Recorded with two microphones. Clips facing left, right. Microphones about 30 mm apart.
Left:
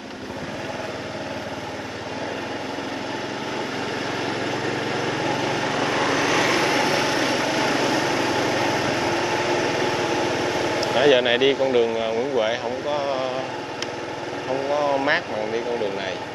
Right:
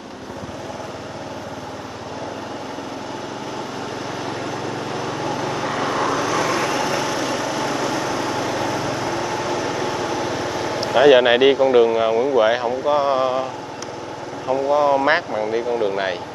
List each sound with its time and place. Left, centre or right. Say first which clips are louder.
4.3 s vehicle: left 1 dB; left
11.0 s speech: right 6 dB; centre
14.5 s speech: right 5 dB; centre